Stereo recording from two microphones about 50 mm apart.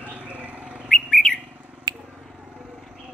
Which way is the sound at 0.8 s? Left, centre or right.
Left.